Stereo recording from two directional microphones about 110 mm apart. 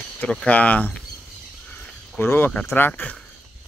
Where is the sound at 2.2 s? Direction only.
15° left (ahead or behind).